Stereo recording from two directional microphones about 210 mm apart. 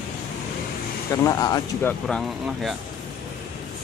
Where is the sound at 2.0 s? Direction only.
Centre (ahead or behind).